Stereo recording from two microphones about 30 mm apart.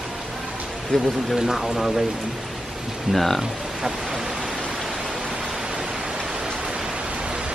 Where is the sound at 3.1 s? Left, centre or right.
Centre.